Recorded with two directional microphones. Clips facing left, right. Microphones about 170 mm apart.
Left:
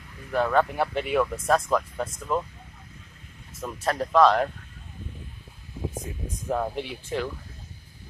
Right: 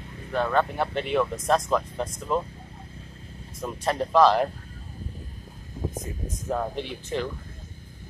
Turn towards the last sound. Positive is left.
turn(degrees=10)  # may be behind; listen again after turning